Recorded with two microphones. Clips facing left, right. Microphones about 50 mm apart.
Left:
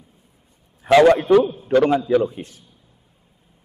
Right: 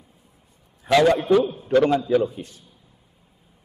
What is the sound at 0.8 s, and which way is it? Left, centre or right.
Speech, centre.